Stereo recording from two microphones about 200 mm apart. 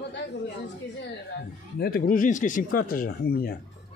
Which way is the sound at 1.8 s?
50° left (ahead or behind).